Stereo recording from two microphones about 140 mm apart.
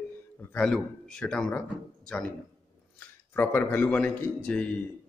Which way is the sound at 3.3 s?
15° left (ahead or behind).